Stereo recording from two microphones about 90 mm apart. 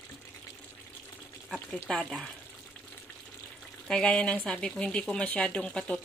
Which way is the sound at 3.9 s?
10° left (ahead or behind).